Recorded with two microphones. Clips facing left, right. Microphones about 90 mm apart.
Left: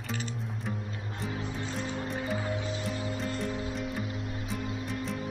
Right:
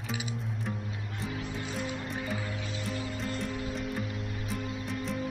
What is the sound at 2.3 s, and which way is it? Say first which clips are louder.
Music: left 4 dB; 25° left (ahead or behind).